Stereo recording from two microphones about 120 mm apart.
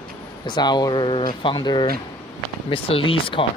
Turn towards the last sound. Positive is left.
turn(degrees=45)  # may be behind; listen again after turning